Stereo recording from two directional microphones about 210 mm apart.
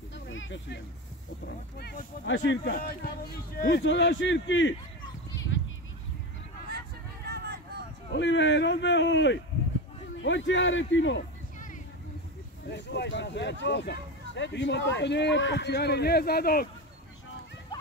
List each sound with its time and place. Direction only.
0.1 s a sound: 65° left (ahead or behind)
1.4 s speech: 50° left (ahead or behind)
2.7 s speech: 45° left (ahead or behind); by 4.7 s 65° left (ahead or behind)
7.2 s vehicle: 50° right (ahead or behind)
8.1 s speech: 55° left (ahead or behind)
12.6 s speech: 55° left (ahead or behind)